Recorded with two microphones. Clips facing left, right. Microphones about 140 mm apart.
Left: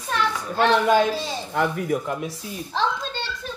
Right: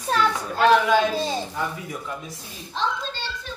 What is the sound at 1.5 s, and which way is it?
Speech, 80° left.